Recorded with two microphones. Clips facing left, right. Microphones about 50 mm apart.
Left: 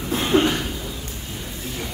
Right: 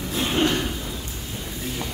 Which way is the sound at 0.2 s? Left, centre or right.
Left.